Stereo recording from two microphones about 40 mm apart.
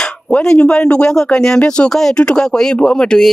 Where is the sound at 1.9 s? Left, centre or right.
Centre.